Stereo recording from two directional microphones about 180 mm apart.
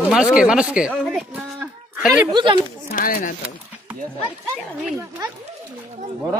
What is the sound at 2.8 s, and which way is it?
Speech, 50° left (ahead or behind).